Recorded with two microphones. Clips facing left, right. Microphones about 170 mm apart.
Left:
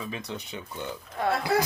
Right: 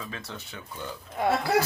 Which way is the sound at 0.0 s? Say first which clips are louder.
Left 4 dB; 15° left (ahead or behind).